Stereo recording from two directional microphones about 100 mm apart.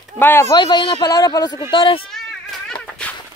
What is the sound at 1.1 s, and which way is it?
Speech, 40° left (ahead or behind).